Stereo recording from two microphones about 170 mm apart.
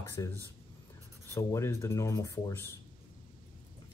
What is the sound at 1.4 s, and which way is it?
Speech, 15° left (ahead or behind).